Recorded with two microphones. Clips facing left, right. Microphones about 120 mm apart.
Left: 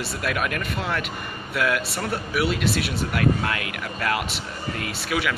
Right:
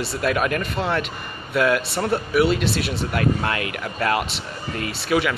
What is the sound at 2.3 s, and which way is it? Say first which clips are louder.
Speech: right 4 dB; centre (ahead or behind).